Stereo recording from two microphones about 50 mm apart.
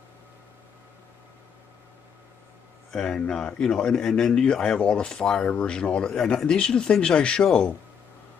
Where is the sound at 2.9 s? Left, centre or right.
Centre.